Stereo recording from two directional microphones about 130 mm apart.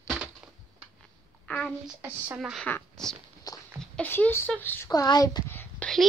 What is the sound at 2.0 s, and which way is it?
Speech, 15° right (ahead or behind).